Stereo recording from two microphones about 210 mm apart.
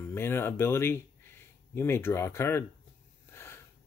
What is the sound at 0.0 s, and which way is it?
Speech, 10° left (ahead or behind).